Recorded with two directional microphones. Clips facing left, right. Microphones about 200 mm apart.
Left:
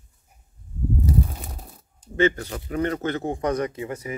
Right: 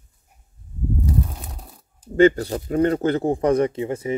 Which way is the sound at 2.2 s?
35° right (ahead or behind).